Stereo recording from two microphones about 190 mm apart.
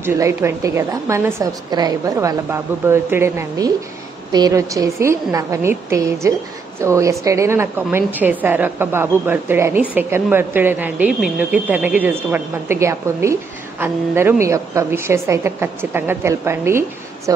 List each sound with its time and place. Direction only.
0.0 s a woman's voice: 15° right (ahead or behind)